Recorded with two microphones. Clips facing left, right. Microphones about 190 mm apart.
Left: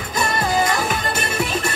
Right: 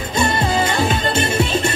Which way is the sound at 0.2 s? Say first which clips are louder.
Right 2 dB; 25° right (ahead or behind).